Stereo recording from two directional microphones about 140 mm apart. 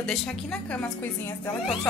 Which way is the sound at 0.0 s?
Centre (ahead or behind).